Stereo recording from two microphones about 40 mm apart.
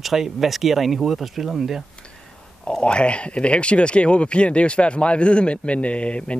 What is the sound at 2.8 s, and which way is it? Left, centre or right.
Speech, left.